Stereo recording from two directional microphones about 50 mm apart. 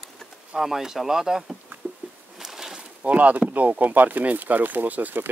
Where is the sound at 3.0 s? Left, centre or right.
Right.